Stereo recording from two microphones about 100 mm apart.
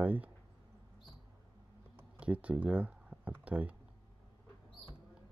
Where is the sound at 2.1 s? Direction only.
15° right (ahead or behind).